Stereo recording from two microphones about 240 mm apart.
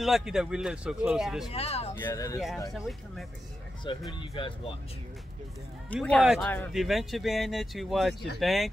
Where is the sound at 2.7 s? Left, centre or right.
Centre.